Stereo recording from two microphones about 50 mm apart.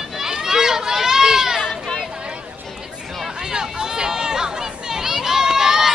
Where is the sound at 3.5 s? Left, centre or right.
Centre.